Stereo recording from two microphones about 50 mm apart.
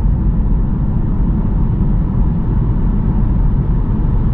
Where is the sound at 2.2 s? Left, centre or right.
Right.